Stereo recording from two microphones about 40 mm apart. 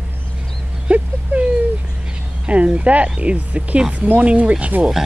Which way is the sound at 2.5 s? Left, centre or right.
Right.